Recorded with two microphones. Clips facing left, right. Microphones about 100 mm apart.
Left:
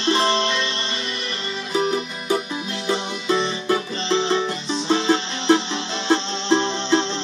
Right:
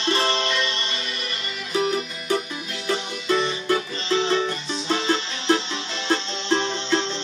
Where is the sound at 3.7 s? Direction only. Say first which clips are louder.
Left 2 dB; 25° left (ahead or behind).